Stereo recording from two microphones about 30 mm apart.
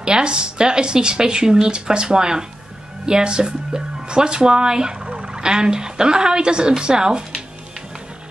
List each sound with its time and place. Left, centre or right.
0.0 s speech: right